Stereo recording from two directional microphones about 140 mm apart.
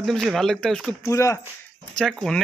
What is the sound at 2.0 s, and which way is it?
Speech, 5° left (ahead or behind).